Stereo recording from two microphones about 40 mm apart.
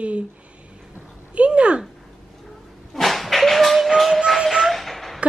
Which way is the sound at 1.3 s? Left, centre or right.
Right.